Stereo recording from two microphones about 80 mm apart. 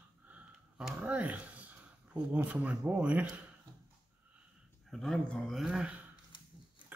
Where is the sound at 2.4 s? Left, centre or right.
Centre.